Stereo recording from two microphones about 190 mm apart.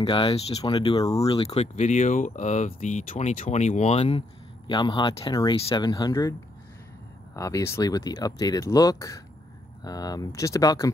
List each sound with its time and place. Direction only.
0.0 s speech: 30° left (ahead or behind)
7.3 s speech: 15° left (ahead or behind)